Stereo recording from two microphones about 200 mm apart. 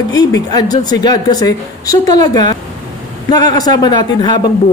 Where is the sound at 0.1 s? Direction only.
20° left (ahead or behind).